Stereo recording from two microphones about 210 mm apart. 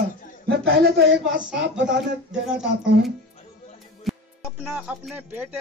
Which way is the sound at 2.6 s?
55° right (ahead or behind).